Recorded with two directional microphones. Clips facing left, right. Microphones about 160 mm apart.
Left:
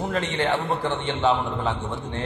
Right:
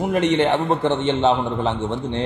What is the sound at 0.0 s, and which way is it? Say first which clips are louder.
A man's voice: right 7 dB; 15° right (ahead or behind).